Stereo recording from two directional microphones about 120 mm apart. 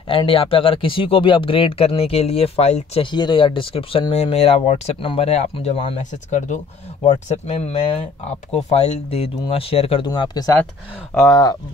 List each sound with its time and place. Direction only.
0.1 s speech: 45° left (ahead or behind)
3.0 s speech: 40° left (ahead or behind); by 5.3 s 55° left (ahead or behind)
5.3 s speech: 65° left (ahead or behind)
7.6 s speech: 60° left (ahead or behind)
10.0 s speech: 35° left (ahead or behind)